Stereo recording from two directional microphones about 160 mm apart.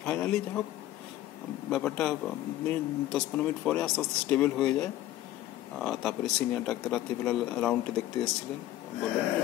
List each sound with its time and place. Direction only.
0.0 s speech: 5° left (ahead or behind)
1.7 s speech: 5° left (ahead or behind)